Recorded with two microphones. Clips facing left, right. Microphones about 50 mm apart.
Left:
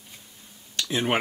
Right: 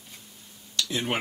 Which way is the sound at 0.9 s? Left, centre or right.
Left.